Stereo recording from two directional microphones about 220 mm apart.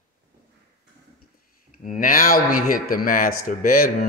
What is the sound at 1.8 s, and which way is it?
Speech, 40° left (ahead or behind).